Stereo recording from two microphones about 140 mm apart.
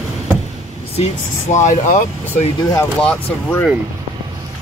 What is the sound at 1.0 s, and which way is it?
Speech, 55° left (ahead or behind).